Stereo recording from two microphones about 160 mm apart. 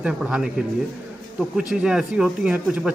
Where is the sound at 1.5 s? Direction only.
5° right (ahead or behind).